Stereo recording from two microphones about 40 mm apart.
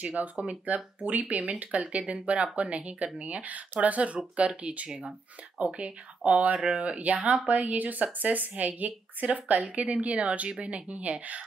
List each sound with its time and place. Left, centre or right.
0.0 s a woman's voice: right